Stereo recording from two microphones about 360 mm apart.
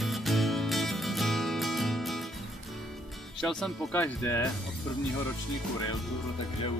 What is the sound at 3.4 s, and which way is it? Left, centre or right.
Speech, centre.